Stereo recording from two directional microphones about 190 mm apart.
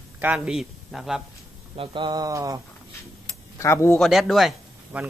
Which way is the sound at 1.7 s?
25° right (ahead or behind).